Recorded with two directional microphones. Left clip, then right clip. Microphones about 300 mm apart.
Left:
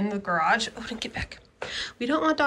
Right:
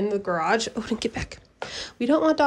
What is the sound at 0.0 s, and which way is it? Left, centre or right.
Speech, centre.